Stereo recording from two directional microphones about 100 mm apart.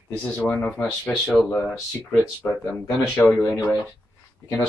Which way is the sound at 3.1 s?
15° left (ahead or behind).